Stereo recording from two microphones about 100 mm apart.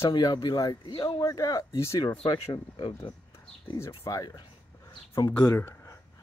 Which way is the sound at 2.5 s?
55° left (ahead or behind).